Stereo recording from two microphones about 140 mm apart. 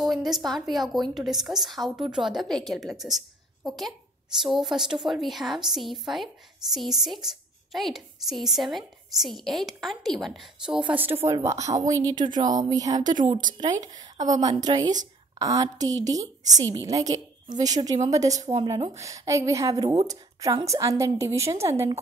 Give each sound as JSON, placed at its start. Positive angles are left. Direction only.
{"t": 0.0, "sound": "a woman's voice", "side_deg": 0}
{"t": 13.0, "sound": "speech", "side_deg": -65}
{"t": 13.8, "sound": "a woman's voice", "side_deg": -25}